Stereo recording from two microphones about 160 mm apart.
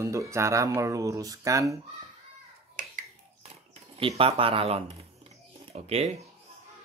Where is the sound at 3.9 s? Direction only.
35° right (ahead or behind).